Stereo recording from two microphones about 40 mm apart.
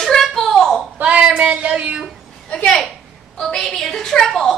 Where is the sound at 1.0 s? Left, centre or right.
Right.